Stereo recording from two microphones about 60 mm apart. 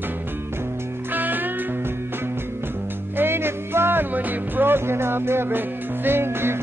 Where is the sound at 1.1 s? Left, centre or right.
Right.